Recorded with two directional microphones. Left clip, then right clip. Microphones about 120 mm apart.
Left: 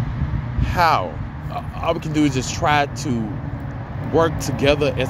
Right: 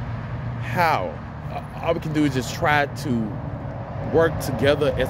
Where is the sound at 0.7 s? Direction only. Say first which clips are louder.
Left 4 dB; 15° right (ahead or behind).